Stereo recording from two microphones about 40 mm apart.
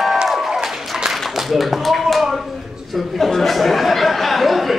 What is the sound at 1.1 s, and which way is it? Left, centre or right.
Clapping, centre.